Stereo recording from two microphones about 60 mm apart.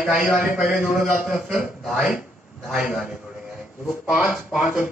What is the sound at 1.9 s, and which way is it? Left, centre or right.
A man's voice, centre.